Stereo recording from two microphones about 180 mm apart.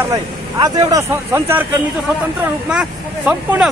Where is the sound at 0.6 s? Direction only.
20° right (ahead or behind).